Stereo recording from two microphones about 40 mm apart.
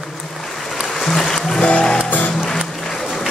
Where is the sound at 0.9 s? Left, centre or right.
Centre.